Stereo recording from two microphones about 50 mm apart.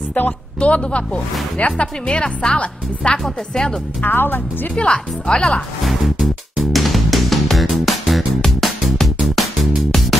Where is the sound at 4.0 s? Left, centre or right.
Left.